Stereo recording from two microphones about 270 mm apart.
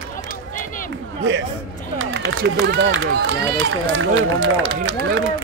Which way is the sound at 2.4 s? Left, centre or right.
Right.